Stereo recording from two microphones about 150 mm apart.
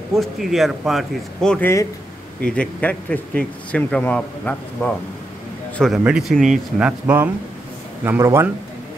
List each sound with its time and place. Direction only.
0.1 s speech: centre (ahead or behind); by 8.5 s 15° right (ahead or behind)